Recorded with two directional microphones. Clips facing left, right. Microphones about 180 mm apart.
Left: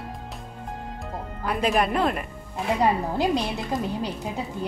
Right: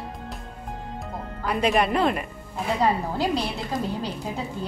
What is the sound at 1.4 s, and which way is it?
Speech, centre (ahead or behind).